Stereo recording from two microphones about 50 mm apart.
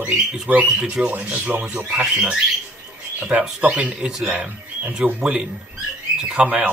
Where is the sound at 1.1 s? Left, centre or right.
Right.